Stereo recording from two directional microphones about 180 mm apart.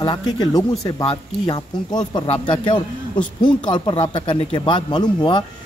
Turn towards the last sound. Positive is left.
turn(degrees=25)  # may be behind; listen again after turning